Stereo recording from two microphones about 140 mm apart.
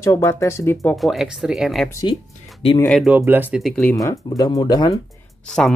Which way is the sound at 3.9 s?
25° left (ahead or behind).